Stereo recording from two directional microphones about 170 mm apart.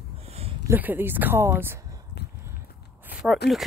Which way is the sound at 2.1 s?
75° left (ahead or behind).